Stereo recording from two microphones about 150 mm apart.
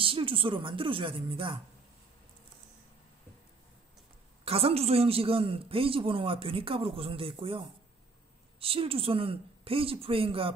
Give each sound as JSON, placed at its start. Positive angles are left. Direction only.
{"t": 0.0, "sound": "a man's voice", "side_deg": -35}
{"t": 4.5, "sound": "a man's voice", "side_deg": -40}